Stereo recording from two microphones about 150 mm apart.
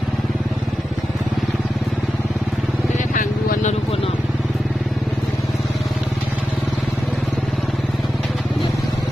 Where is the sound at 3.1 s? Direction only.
60° left (ahead or behind).